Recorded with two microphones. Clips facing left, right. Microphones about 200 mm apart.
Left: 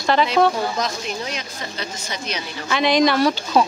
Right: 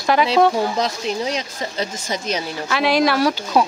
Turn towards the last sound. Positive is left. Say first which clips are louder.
# even
turn(degrees=-10)  # may be behind; listen again after turning